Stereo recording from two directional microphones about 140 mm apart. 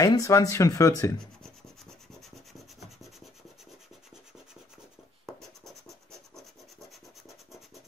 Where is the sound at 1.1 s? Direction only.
5° left (ahead or behind).